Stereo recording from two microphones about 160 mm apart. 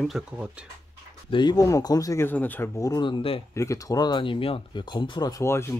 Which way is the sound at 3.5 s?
20° left (ahead or behind).